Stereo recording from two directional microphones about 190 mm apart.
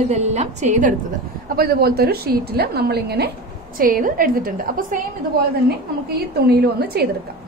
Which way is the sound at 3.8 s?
45° right (ahead or behind).